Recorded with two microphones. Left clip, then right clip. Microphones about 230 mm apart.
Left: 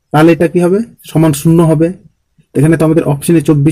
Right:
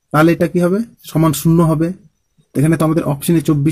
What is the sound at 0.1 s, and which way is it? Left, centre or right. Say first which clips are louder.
Speech: left 5 dB; right.